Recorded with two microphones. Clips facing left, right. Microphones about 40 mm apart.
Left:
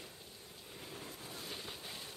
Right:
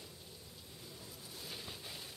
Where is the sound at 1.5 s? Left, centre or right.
Centre.